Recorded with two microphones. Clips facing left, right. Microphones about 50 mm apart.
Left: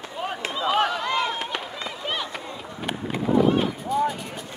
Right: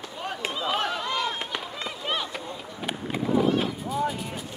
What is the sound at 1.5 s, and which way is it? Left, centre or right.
Run, centre.